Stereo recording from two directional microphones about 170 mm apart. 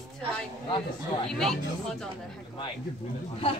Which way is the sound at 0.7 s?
30° left (ahead or behind).